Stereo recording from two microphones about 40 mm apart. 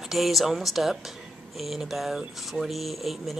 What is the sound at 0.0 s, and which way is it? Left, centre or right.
Speech, centre.